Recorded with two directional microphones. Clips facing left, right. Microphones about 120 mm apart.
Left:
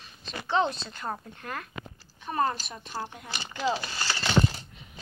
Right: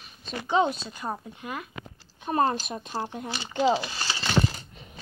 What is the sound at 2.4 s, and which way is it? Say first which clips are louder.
Speech: right 3 dB; 25° right (ahead or behind).